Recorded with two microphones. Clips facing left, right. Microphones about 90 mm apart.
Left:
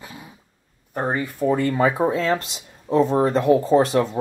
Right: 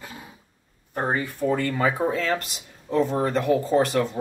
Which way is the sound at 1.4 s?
20° left (ahead or behind).